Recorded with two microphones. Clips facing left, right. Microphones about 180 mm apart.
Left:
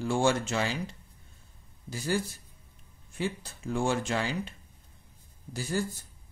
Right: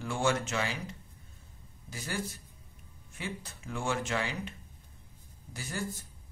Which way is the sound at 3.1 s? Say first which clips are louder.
Left 7 dB; 30° left (ahead or behind).